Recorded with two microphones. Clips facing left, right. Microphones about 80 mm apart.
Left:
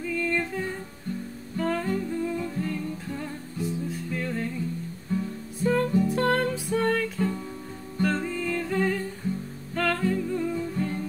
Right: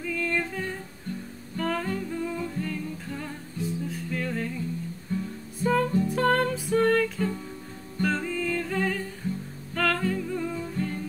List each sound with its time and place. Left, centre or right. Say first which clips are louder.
0.0 s music: left 1 dB; centre
5.6 s music: left 1 dB; centre